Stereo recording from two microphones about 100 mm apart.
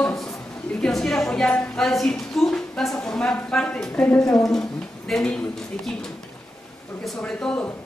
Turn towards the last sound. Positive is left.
turn(degrees=10)  # may be behind; listen again after turning